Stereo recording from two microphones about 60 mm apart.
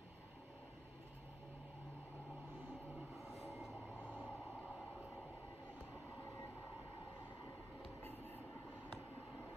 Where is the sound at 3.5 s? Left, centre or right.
Centre.